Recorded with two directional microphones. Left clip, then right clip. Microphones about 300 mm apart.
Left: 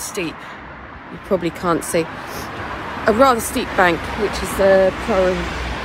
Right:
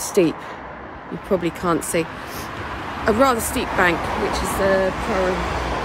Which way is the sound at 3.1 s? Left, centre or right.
Centre.